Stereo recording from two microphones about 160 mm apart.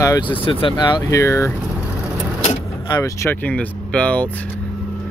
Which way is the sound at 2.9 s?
20° left (ahead or behind).